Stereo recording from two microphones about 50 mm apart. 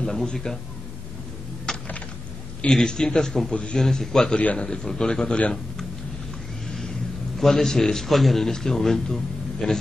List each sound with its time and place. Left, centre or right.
0.0 s a man's voice: centre
1.7 s a sound: centre
2.7 s a man's voice: centre
3.7 s a man's voice: centre
4.4 s a man's voice: left
4.6 s a man's voice: centre
7.3 s a man's voice: centre